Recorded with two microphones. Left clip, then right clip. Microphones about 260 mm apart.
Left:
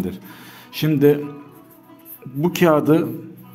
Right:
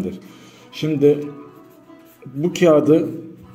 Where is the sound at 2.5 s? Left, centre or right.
Centre.